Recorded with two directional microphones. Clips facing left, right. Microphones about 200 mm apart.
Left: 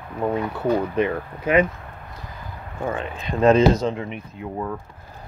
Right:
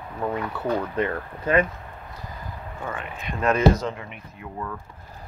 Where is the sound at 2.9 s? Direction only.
30° left (ahead or behind).